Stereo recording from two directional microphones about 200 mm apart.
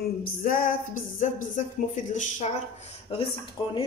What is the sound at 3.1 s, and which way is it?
Speech, 25° left (ahead or behind).